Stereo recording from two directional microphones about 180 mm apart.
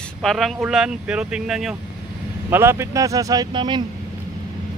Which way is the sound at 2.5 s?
15° right (ahead or behind).